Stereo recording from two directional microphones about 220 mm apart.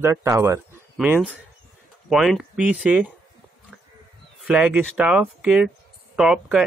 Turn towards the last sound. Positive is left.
turn(degrees=-5)  # may be behind; listen again after turning